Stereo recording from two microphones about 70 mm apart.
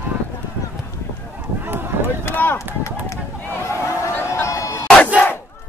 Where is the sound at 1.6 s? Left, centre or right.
Right.